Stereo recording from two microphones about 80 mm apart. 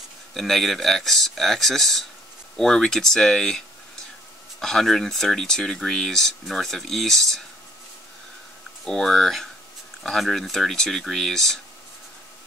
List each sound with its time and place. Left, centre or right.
0.3 s speech: centre
8.8 s speech: centre